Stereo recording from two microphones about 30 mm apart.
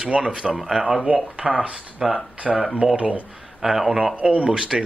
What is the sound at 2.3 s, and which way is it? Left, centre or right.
Speech, right.